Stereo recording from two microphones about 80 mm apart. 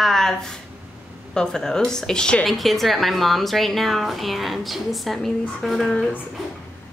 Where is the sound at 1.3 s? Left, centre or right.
Centre.